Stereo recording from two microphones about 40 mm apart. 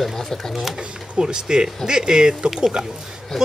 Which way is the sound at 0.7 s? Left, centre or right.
Centre.